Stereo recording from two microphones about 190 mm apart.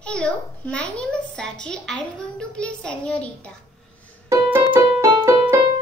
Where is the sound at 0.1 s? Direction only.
5° left (ahead or behind).